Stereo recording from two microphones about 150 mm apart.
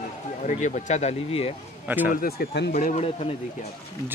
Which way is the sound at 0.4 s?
55° left (ahead or behind).